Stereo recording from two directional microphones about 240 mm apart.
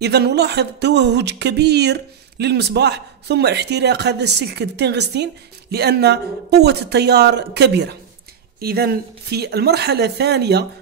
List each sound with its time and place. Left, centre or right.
0.0 s speech: right